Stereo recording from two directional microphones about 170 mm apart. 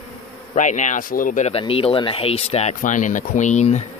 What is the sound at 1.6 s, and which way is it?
Speech, 35° left (ahead or behind).